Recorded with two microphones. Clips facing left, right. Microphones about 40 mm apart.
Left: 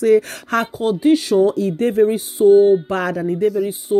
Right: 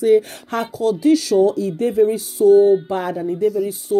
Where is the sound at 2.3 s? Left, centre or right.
Left.